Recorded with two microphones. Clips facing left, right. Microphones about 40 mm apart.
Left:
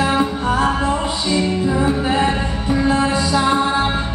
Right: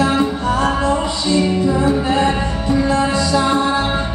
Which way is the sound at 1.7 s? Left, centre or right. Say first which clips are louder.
Right 2 dB; centre.